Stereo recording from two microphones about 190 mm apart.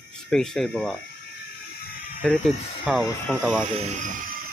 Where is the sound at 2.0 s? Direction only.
50° left (ahead or behind).